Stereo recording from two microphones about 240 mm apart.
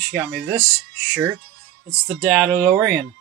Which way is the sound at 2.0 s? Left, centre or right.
Centre.